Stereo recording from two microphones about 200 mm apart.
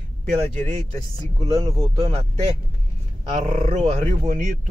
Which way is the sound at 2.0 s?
30° right (ahead or behind).